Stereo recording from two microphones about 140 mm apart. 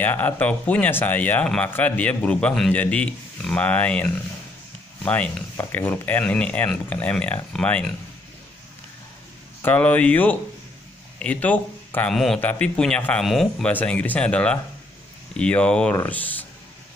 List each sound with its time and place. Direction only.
0.0 s speech: 10° left (ahead or behind)
9.6 s speech: 10° left (ahead or behind)